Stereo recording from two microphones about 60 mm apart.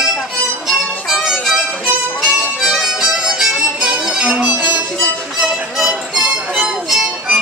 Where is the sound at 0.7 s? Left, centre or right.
Centre.